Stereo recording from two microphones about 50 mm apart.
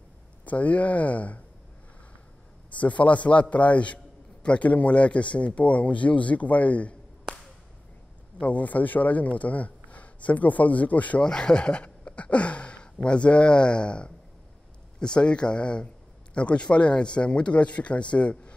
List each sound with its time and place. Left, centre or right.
0.5 s speech: left
2.7 s a man's voice: left
8.4 s speech: left
11.2 s a man's voice: centre